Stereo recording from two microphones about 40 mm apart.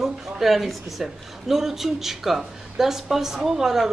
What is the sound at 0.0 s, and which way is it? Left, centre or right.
A woman's voice, centre.